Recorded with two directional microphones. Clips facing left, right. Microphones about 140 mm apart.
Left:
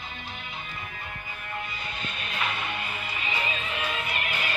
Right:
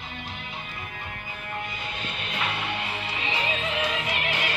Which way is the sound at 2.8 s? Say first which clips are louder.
Right 3 dB; 70° right (ahead or behind).